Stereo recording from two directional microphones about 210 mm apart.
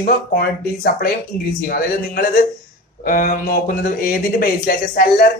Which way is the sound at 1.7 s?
45° left (ahead or behind).